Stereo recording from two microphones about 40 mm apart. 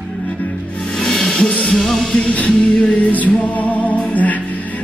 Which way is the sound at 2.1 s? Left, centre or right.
Left.